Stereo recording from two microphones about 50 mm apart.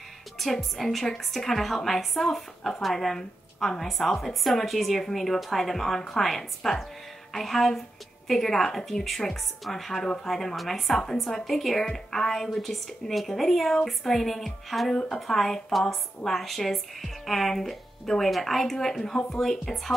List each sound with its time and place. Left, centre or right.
0.4 s speech: centre